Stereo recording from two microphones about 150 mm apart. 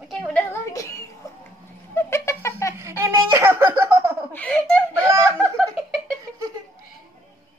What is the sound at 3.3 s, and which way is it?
Giggle, 15° right (ahead or behind).